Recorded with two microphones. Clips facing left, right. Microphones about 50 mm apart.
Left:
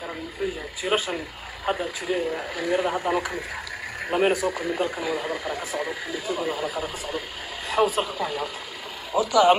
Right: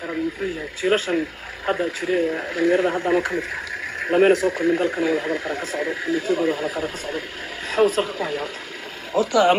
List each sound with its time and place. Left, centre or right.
0.8 s speech: centre
2.0 s speech: centre
2.5 s speech: centre
4.0 s a sound: centre
4.3 s speech: centre